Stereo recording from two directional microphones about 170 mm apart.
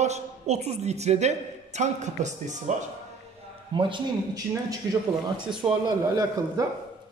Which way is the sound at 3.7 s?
30° right (ahead or behind).